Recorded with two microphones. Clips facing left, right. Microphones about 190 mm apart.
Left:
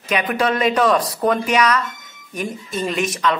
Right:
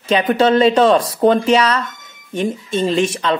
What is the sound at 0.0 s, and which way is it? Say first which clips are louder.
Speech: right 6 dB; 25° right (ahead or behind).